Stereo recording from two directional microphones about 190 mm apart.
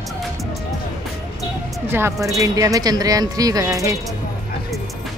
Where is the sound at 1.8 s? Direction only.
15° right (ahead or behind).